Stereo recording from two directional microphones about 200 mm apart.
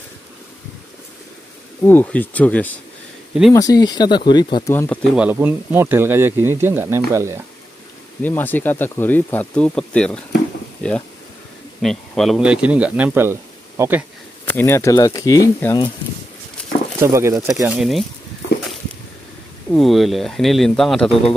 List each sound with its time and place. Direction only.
1.9 s speech: 10° left (ahead or behind)
3.5 s speech: 20° left (ahead or behind)
5.1 s speech: 5° right (ahead or behind)
8.2 s speech: 10° left (ahead or behind); by 14.0 s 10° right (ahead or behind)
14.4 s speech: 10° left (ahead or behind)
17.0 s speech: 15° right (ahead or behind)
17.6 s speech: centre (ahead or behind)
19.7 s speech: centre (ahead or behind)